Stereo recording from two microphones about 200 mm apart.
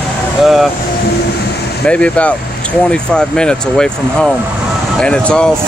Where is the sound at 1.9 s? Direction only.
5° left (ahead or behind).